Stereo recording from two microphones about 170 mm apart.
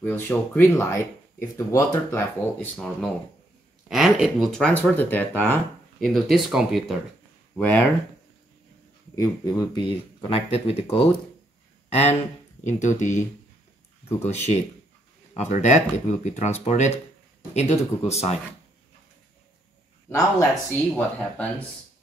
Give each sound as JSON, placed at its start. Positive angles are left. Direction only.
{"t": 0.0, "sound": "speech", "side_deg": 10}
{"t": 3.9, "sound": "speech", "side_deg": 0}
{"t": 7.5, "sound": "speech", "side_deg": 10}
{"t": 9.1, "sound": "speech", "side_deg": 20}
{"t": 10.3, "sound": "speech", "side_deg": 35}
{"t": 14.2, "sound": "speech", "side_deg": 40}
{"t": 20.1, "sound": "speech", "side_deg": 20}
{"t": 20.9, "sound": "speech", "side_deg": 5}